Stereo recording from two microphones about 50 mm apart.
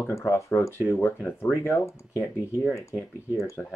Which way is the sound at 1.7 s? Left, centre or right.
Left.